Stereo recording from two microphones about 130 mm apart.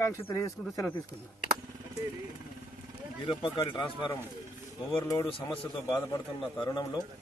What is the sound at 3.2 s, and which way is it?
Speech, 40° left (ahead or behind).